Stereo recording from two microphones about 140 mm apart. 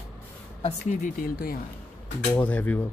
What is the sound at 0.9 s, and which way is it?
Speech, 70° left (ahead or behind).